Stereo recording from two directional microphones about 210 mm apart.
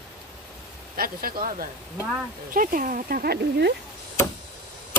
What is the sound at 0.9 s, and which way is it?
Speech, 45° right (ahead or behind).